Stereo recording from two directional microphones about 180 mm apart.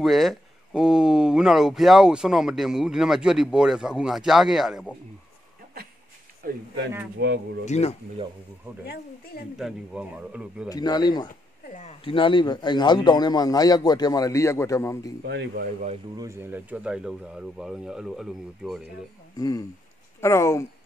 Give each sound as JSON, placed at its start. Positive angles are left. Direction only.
{"t": 0.0, "sound": "speech", "side_deg": 0}
{"t": 6.4, "sound": "speech", "side_deg": -55}
{"t": 7.6, "sound": "speech", "side_deg": 40}
{"t": 8.8, "sound": "speech", "side_deg": 60}
{"t": 9.6, "sound": "speech", "side_deg": -5}
{"t": 10.7, "sound": "a man's voice", "side_deg": 20}
{"t": 15.2, "sound": "speech", "side_deg": -65}
{"t": 16.2, "sound": "speech", "side_deg": -15}
{"t": 19.3, "sound": "speech", "side_deg": 20}